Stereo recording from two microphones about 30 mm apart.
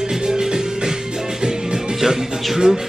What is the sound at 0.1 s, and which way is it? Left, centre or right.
Music, right.